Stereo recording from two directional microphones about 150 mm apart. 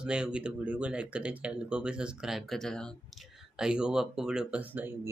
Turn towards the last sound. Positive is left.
turn(degrees=-10)  # may be behind; listen again after turning